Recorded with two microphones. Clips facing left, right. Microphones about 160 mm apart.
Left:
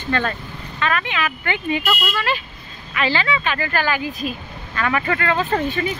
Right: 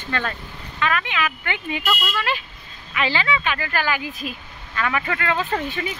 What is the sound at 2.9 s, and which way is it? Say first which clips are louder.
Speech: left 2 dB; 15° right (ahead or behind).